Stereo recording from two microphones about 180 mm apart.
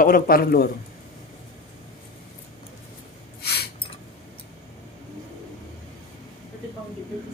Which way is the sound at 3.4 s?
65° left (ahead or behind).